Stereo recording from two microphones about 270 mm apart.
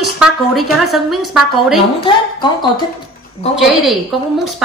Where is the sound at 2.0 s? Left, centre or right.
Centre.